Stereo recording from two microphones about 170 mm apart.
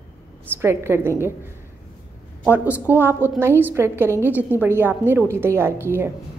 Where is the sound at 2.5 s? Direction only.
10° right (ahead or behind).